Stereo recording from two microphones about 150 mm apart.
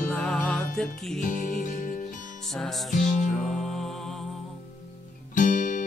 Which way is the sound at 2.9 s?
60° left (ahead or behind).